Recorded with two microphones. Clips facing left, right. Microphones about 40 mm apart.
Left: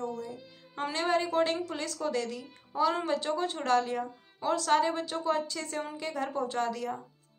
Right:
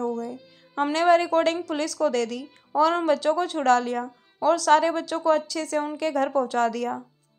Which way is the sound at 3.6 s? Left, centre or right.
Right.